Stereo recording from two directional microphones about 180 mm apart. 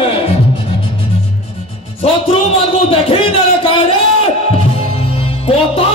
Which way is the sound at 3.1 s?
30° left (ahead or behind).